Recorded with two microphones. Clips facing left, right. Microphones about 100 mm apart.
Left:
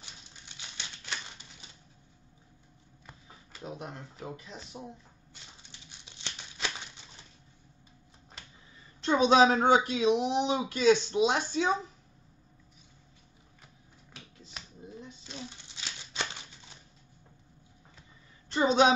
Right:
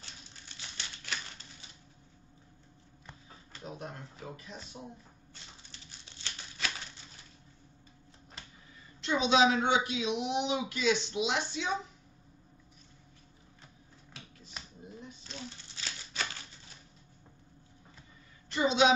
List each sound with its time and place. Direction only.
0.0 s typewriter: 20° left (ahead or behind)
3.6 s speech: 20° left (ahead or behind)
5.7 s tearing: 20° left (ahead or behind)
9.0 s speech: 45° left (ahead or behind)
15.2 s a sound: 15° left (ahead or behind)
18.5 s a sound: 40° left (ahead or behind)